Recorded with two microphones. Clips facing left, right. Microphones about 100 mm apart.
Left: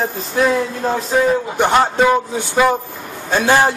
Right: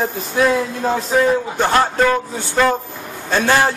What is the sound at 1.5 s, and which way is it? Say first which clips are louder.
A man's voice: left 2 dB; 15° left (ahead or behind).